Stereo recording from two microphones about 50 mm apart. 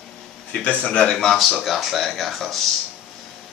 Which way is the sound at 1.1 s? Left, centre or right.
Centre.